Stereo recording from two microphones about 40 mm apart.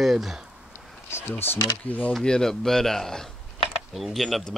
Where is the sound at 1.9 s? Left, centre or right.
Left.